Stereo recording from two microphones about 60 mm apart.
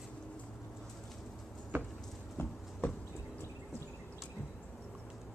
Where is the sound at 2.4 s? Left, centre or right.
Left.